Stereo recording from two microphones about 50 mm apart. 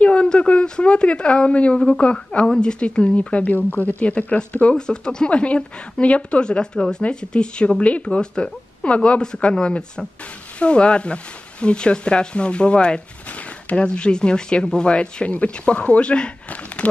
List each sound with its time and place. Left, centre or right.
0.0 s a woman's voice: left
4.7 s speech: centre